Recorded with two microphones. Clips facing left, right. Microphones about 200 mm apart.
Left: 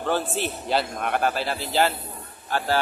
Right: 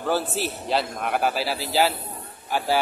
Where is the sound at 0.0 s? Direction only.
5° right (ahead or behind).